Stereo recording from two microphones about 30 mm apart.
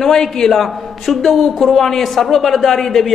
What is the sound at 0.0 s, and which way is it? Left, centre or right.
Speech, centre.